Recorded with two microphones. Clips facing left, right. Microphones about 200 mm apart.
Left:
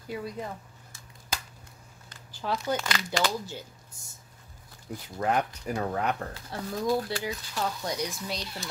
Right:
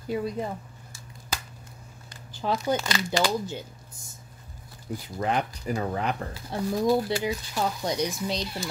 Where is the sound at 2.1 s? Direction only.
20° right (ahead or behind).